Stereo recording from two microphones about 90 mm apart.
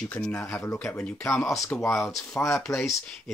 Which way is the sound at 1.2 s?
5° left (ahead or behind).